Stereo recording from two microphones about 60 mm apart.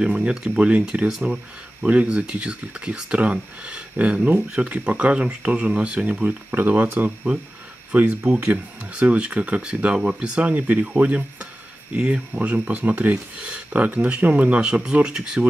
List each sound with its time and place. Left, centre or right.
0.0 s speech: centre
1.0 s speech: centre
1.9 s speech: right